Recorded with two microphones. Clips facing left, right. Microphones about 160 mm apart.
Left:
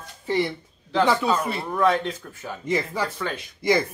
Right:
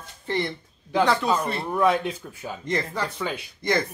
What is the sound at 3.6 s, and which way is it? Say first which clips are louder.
Speech: left 3 dB; 10° left (ahead or behind).